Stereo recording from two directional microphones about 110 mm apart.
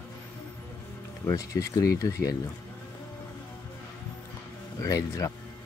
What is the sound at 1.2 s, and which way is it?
Speech, 30° left (ahead or behind).